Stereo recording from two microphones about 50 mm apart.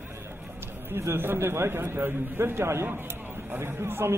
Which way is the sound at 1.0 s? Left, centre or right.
Right.